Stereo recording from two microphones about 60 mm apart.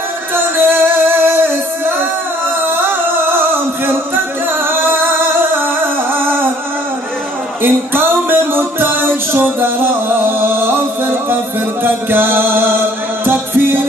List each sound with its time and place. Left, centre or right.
0.3 s music: right
2.6 s singing: right
6.1 s music: right
7.6 s music: right
11.8 s music: right